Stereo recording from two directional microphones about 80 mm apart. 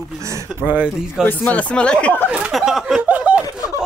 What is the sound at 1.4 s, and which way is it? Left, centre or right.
Speech, centre.